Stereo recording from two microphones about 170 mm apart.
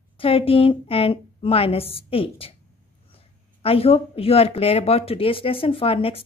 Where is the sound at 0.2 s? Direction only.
35° left (ahead or behind).